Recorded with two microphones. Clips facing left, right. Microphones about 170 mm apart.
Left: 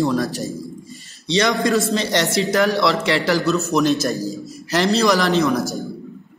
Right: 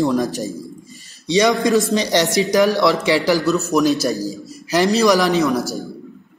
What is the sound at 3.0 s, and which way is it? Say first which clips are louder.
A man's voice: right 2 dB; 5° right (ahead or behind).